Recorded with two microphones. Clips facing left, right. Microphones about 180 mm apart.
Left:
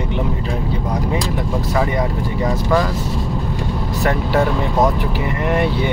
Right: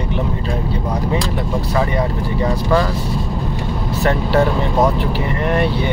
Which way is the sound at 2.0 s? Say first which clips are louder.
Right 1 dB; 15° left (ahead or behind).